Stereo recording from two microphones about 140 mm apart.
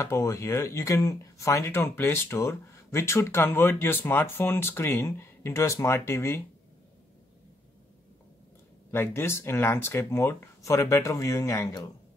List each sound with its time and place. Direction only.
0.0 s speech: 20° left (ahead or behind)
8.9 s speech: 20° left (ahead or behind)